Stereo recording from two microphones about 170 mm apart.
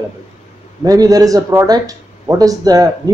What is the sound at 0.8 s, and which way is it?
Speech, 20° right (ahead or behind).